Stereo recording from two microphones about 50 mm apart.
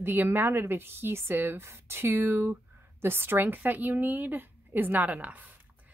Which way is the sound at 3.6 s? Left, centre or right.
Right.